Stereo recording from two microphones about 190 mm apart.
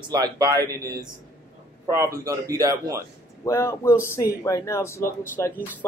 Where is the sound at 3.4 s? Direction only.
15° left (ahead or behind).